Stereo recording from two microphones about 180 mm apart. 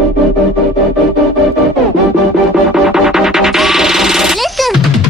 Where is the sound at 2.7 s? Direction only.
5° right (ahead or behind).